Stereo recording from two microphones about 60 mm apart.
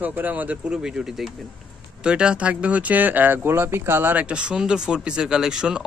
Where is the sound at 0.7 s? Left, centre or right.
Centre; by 4.1 s right.